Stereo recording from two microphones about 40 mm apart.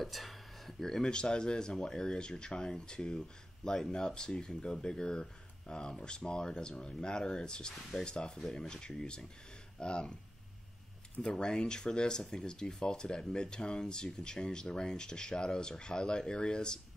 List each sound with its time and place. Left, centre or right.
0.0 s speech: centre; by 8.4 s left
8.4 s speech: centre
11.2 s speech: left